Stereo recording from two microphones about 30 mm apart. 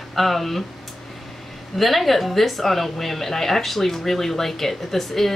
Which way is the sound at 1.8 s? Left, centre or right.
Centre.